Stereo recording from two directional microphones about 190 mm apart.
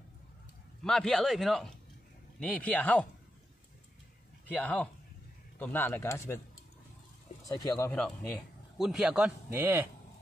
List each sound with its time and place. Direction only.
0.8 s a man's voice: 5° left (ahead or behind)
4.6 s speech: 5° left (ahead or behind)
7.4 s speech: 20° left (ahead or behind)
8.7 s a man's voice: centre (ahead or behind)